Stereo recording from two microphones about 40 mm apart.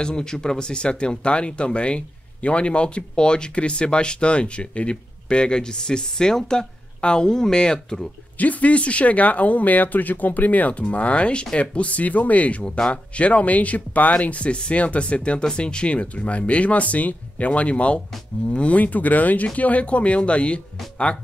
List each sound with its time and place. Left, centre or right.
0.0 s speech: centre
8.4 s speech: left